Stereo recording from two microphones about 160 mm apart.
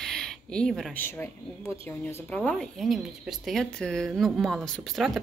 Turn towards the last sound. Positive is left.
turn(degrees=0)  # may be behind; listen again after turning